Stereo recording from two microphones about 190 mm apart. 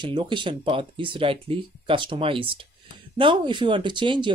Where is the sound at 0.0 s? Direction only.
25° right (ahead or behind).